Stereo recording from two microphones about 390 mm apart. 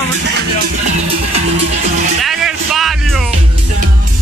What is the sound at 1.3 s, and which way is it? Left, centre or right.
Speech, centre.